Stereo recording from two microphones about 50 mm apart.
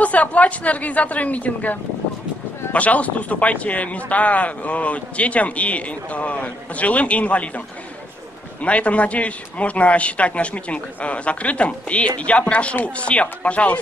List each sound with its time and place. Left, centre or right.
0.0 s speech: left